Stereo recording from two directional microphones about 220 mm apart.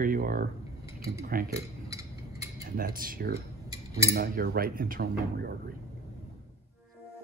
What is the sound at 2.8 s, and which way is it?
Speech, 40° right (ahead or behind).